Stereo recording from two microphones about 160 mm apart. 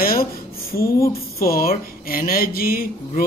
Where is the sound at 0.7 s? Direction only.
70° left (ahead or behind).